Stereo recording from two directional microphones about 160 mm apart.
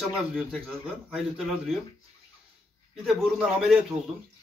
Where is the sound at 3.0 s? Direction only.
Centre (ahead or behind).